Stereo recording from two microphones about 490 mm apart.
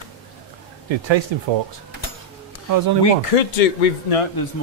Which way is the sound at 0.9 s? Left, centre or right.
Right.